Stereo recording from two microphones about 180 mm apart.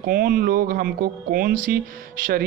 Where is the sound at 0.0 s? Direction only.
50° right (ahead or behind).